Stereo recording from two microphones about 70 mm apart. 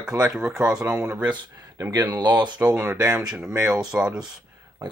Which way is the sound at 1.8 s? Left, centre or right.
Right.